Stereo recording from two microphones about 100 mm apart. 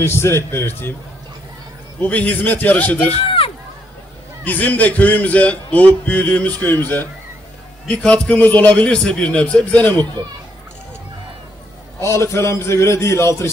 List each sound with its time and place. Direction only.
0.0 s a man's voice: 25° left (ahead or behind)
2.0 s a man's voice: 15° left (ahead or behind)
3.3 s run: 65° left (ahead or behind)
4.5 s a man's voice: 15° left (ahead or behind)
12.0 s a man's voice: 30° left (ahead or behind)